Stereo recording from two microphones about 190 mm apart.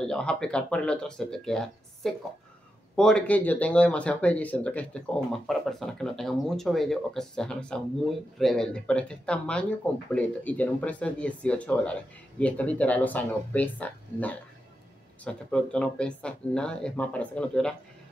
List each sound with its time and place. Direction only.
0.0 s speech: 5° left (ahead or behind)